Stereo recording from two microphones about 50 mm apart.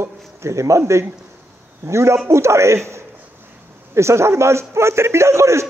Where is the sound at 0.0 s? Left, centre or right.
Right.